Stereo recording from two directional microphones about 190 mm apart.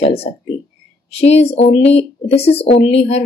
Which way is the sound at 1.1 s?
35° left (ahead or behind).